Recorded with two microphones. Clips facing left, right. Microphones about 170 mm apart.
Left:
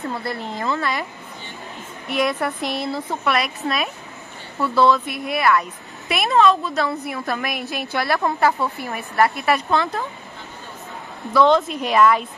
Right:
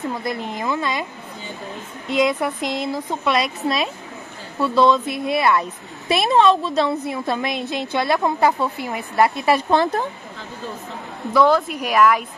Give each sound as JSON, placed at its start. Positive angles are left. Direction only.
{"t": 0.1, "sound": "a woman's voice", "side_deg": -15}
{"t": 2.0, "sound": "a woman's voice", "side_deg": -20}
{"t": 4.6, "sound": "a woman's voice", "side_deg": -20}
{"t": 11.3, "sound": "a woman's voice", "side_deg": -10}